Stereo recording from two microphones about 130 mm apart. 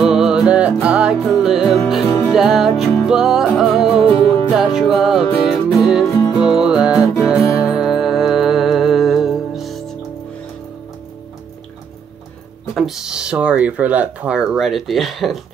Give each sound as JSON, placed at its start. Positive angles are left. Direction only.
{"t": 0.0, "sound": "music", "side_deg": -5}
{"t": 6.0, "sound": "music", "side_deg": 25}
{"t": 6.4, "sound": "music", "side_deg": -5}
{"t": 12.7, "sound": "speech", "side_deg": -5}